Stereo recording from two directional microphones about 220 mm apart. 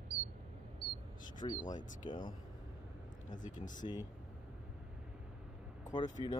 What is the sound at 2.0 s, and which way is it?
Speech, 20° left (ahead or behind).